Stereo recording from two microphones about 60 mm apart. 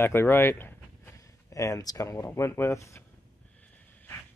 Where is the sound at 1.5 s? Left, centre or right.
Left.